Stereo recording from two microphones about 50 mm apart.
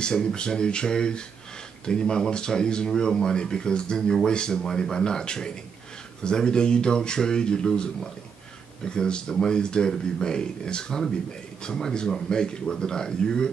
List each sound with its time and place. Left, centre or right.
0.0 s speech: centre